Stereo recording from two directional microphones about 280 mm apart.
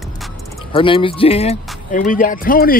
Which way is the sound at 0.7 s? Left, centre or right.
Centre.